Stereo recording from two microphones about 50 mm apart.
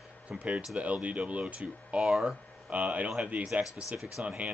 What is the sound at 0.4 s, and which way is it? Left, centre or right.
Speech, right.